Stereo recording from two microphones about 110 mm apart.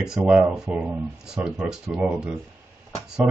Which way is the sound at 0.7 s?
15° right (ahead or behind).